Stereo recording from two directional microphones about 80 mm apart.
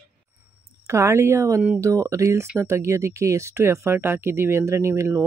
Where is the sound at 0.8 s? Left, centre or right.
Right.